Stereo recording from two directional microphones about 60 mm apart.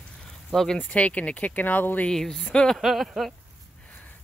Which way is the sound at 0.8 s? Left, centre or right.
Left.